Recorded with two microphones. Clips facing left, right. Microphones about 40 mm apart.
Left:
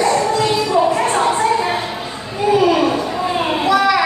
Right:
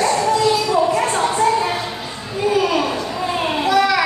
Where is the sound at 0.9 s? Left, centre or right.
Left.